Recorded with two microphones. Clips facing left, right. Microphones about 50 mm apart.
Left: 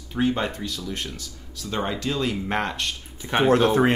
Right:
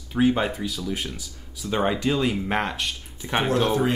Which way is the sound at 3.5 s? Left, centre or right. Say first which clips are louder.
Left 4 dB; left.